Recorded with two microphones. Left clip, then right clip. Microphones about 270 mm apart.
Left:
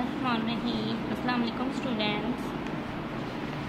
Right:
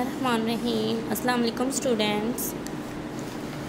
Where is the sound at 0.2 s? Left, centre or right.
Right.